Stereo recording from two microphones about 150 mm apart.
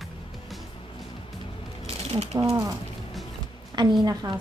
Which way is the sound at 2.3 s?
20° right (ahead or behind).